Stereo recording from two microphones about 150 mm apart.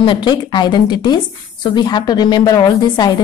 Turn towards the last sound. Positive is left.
turn(degrees=25)  # may be behind; listen again after turning